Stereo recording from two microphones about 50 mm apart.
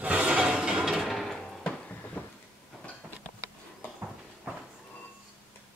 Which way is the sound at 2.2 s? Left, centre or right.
Left.